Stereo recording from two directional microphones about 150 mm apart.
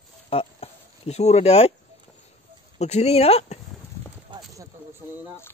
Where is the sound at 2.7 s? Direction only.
45° left (ahead or behind).